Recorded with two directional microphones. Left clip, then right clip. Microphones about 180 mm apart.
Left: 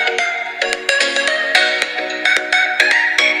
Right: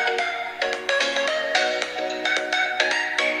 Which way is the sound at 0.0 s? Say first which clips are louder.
Left 6 dB; 55° left (ahead or behind).